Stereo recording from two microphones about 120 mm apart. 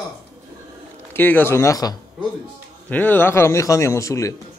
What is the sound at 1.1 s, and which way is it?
Speech, 15° left (ahead or behind).